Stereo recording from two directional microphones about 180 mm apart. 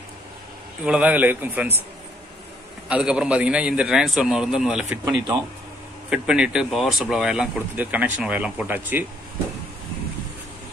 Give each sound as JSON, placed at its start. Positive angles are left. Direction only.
{"t": 0.8, "sound": "a man's voice", "side_deg": -10}
{"t": 2.9, "sound": "speech", "side_deg": -5}
{"t": 5.0, "sound": "a man's voice", "side_deg": -15}
{"t": 6.0, "sound": "speech", "side_deg": -5}